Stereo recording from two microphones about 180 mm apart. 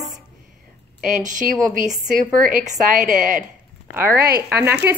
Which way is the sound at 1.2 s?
45° right (ahead or behind).